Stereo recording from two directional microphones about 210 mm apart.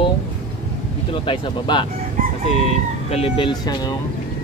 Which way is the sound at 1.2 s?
25° left (ahead or behind).